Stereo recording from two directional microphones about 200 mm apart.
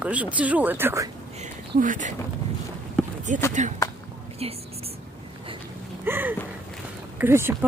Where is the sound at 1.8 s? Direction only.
40° right (ahead or behind).